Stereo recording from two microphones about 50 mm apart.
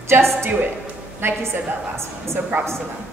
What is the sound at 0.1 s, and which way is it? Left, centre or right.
Speech, right.